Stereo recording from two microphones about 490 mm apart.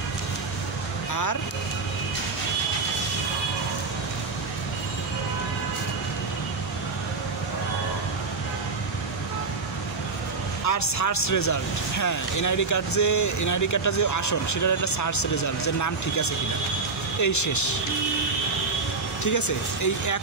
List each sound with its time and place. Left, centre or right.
1.1 s speech: left
10.6 s speech: left
19.2 s speech: left